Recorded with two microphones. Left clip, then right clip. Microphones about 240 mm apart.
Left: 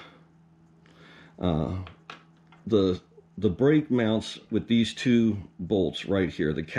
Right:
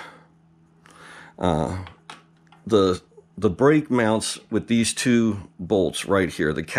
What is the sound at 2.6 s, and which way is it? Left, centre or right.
Speech, centre.